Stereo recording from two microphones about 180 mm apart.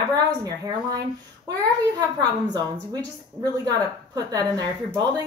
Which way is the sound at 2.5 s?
20° right (ahead or behind).